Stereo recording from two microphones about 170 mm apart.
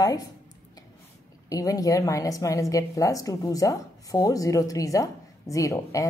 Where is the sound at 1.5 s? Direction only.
20° left (ahead or behind).